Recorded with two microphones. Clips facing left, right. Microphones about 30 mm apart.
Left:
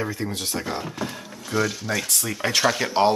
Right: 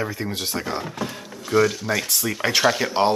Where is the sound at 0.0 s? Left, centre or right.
Centre.